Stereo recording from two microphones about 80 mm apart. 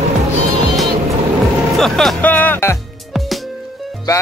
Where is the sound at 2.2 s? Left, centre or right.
Left.